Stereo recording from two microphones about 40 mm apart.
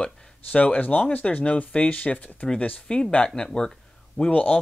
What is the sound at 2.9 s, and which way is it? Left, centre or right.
Speech, centre.